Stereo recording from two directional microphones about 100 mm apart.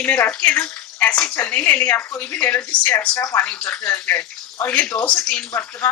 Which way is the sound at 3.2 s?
30° left (ahead or behind).